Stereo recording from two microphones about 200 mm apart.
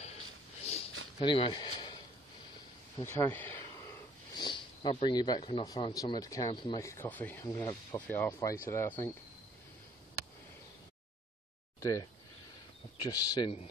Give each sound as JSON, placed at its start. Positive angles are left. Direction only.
{"t": 0.6, "sound": "a sound", "side_deg": 30}
{"t": 1.2, "sound": "speech", "side_deg": 25}
{"t": 3.1, "sound": "speech", "side_deg": 10}
{"t": 4.4, "sound": "speech", "side_deg": 25}
{"t": 11.8, "sound": "speech", "side_deg": 15}